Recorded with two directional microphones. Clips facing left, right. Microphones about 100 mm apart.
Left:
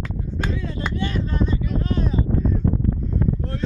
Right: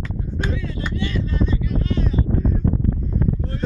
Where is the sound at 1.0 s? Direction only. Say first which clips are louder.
Right 1 dB; 45° left (ahead or behind).